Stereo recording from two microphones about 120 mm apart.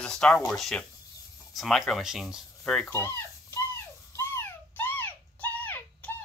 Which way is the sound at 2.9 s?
25° left (ahead or behind).